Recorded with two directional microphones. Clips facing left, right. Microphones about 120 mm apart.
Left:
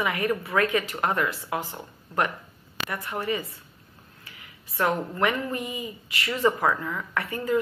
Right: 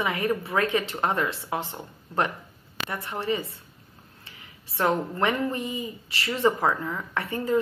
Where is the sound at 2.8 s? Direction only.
30° right (ahead or behind).